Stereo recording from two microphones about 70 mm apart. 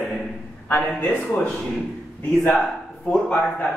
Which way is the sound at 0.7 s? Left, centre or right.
Left.